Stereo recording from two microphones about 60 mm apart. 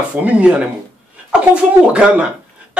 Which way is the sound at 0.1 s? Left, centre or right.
Right.